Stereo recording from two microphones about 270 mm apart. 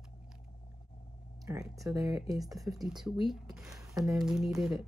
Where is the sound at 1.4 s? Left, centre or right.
Centre.